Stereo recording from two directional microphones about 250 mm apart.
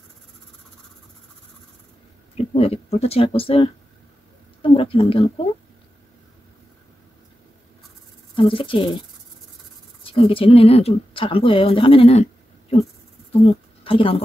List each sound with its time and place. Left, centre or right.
2.3 s speech: left
4.6 s a sound: left
8.4 s speech: left
10.0 s a woman's voice: left